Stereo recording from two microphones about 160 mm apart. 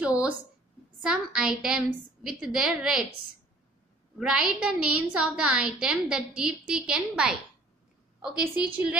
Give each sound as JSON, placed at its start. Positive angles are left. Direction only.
{"t": 0.0, "sound": "a sound", "side_deg": -5}
{"t": 1.0, "sound": "a woman's voice", "side_deg": -5}
{"t": 4.2, "sound": "a woman's voice", "side_deg": -5}